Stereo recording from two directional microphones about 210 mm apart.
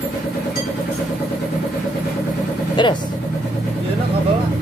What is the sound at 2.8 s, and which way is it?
Vehicle, 20° left (ahead or behind).